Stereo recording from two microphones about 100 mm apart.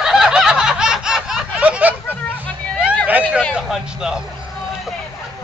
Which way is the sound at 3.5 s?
10° right (ahead or behind).